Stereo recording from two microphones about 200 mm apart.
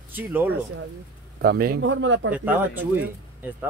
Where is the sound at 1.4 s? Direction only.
50° right (ahead or behind).